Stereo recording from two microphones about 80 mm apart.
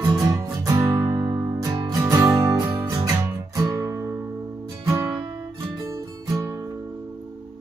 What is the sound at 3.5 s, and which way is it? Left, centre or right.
Guitar, right.